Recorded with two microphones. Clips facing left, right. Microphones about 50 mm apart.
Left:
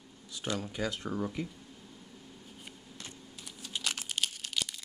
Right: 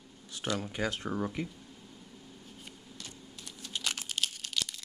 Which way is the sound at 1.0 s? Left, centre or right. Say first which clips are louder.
Right 1 dB; right.